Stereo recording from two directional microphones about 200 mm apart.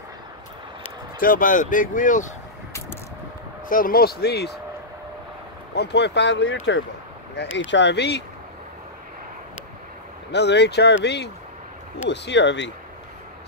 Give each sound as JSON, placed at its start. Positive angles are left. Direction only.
{"t": 1.2, "sound": "speech", "side_deg": 45}
{"t": 3.6, "sound": "speech", "side_deg": 45}
{"t": 5.8, "sound": "speech", "side_deg": 60}
{"t": 10.3, "sound": "speech", "side_deg": 60}